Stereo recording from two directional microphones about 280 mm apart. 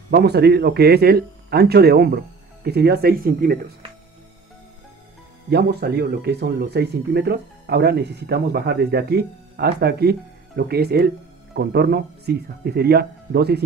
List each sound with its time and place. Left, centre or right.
0.1 s speech: right
5.5 s speech: right